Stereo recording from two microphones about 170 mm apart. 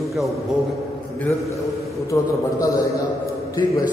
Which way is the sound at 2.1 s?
20° left (ahead or behind).